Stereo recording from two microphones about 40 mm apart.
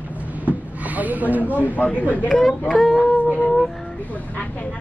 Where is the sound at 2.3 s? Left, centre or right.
Centre.